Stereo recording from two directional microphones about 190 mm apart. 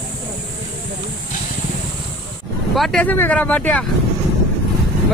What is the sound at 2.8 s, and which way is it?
Speech, 5° left (ahead or behind).